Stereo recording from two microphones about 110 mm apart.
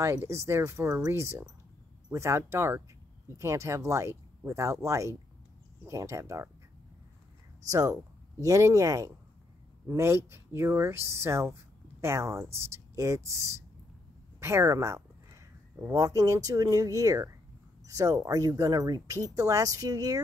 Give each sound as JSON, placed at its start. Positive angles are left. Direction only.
{"t": 0.0, "sound": "speech", "side_deg": -25}
{"t": 7.7, "sound": "speech", "side_deg": -30}